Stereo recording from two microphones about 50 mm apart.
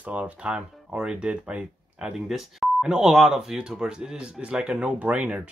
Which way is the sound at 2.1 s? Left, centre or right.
Centre.